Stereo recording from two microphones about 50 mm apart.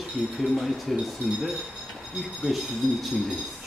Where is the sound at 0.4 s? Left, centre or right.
Centre.